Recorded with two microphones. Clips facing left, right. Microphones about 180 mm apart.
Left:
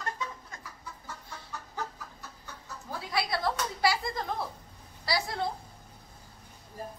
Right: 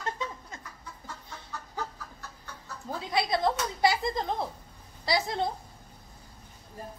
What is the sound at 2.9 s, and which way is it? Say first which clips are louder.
Speech: right 3 dB; 20° right (ahead or behind).